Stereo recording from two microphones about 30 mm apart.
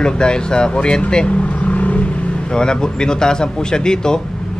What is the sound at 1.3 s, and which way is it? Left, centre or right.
Vehicle, left.